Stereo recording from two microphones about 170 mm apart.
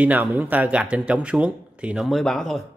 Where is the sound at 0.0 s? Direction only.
10° right (ahead or behind).